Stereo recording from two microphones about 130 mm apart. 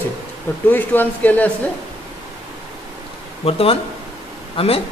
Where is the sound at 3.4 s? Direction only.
45° left (ahead or behind).